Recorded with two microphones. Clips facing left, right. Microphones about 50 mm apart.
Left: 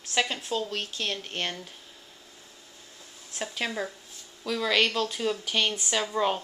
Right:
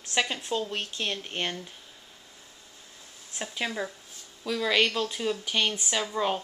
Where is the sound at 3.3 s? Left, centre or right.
Centre.